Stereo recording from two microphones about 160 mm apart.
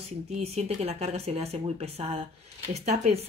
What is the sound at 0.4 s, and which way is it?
A woman's voice, 40° right (ahead or behind).